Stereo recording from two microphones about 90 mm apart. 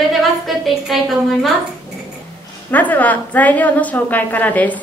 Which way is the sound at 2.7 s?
20° left (ahead or behind).